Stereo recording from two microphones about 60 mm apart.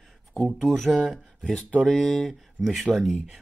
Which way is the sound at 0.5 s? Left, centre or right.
Centre.